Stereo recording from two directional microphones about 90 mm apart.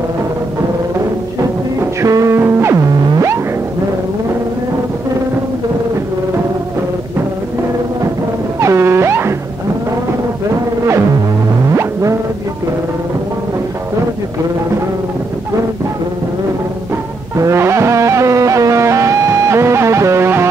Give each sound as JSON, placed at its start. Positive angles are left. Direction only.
{"t": 1.8, "sound": "music", "side_deg": -35}
{"t": 8.5, "sound": "music", "side_deg": -30}
{"t": 11.7, "sound": "music", "side_deg": -30}
{"t": 17.4, "sound": "music", "side_deg": -30}